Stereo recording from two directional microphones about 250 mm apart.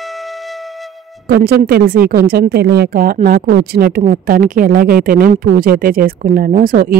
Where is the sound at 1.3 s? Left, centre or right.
Right.